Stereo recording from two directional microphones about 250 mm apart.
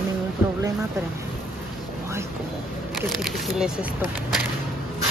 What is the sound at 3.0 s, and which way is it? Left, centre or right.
Speech, centre.